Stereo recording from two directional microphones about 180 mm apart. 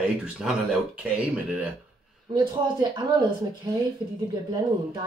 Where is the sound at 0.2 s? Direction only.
5° right (ahead or behind).